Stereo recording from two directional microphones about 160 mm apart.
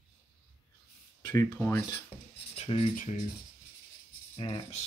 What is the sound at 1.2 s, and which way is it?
Speech, 25° left (ahead or behind).